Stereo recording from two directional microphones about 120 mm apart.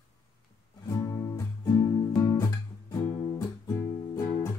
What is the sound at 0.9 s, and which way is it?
Guitar, 30° left (ahead or behind).